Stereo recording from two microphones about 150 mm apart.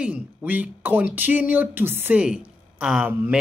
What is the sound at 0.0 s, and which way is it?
Speech, 10° right (ahead or behind).